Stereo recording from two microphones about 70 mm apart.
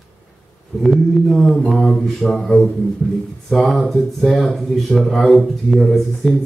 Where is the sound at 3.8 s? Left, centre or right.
Centre.